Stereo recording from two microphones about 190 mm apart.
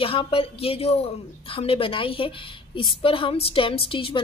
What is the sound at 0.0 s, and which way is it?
A woman's voice, 30° left (ahead or behind).